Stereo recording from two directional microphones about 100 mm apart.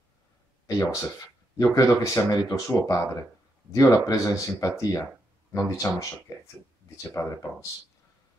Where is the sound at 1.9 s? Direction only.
25° left (ahead or behind).